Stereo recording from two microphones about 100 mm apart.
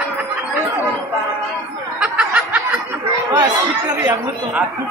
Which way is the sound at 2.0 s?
10° right (ahead or behind).